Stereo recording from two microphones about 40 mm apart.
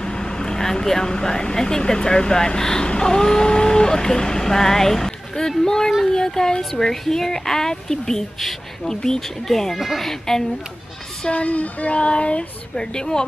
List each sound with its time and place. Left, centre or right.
0.0 s speech: centre
11.2 s speech: left